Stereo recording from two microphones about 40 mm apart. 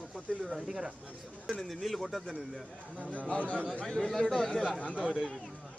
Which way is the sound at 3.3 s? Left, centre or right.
Left.